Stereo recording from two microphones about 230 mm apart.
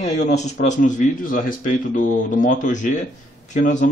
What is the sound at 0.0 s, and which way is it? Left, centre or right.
A man's voice, left.